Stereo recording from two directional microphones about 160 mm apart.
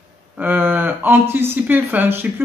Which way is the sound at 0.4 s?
10° right (ahead or behind).